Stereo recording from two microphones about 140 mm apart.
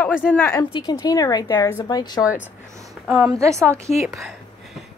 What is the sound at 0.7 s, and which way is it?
Speech, 30° left (ahead or behind).